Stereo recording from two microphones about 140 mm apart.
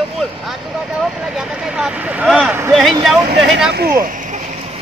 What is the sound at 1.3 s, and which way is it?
Speech, 5° right (ahead or behind).